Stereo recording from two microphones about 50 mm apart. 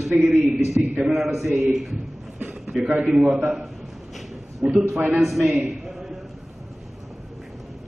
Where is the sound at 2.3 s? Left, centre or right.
Right.